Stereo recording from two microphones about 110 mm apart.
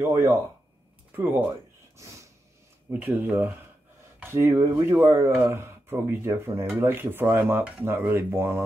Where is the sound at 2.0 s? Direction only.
30° right (ahead or behind).